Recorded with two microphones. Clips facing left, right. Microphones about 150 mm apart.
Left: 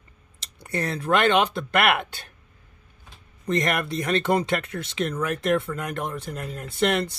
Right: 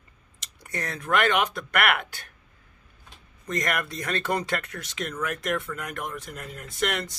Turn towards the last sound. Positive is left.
turn(degrees=30)  # may be behind; listen again after turning